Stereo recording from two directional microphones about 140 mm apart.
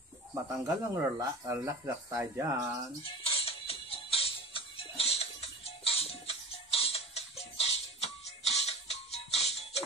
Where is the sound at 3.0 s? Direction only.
45° left (ahead or behind).